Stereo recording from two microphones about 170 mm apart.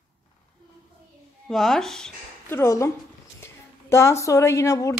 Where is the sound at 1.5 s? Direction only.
Centre (ahead or behind).